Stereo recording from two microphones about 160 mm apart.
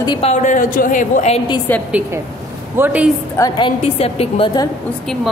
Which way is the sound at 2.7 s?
10° right (ahead or behind).